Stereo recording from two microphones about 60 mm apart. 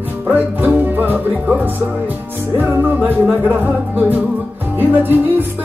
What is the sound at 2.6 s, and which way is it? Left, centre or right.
Music, right.